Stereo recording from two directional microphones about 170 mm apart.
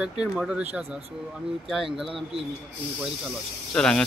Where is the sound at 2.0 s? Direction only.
Centre (ahead or behind).